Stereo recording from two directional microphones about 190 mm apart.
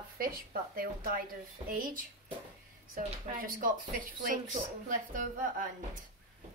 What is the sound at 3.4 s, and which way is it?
Speech, 45° right (ahead or behind).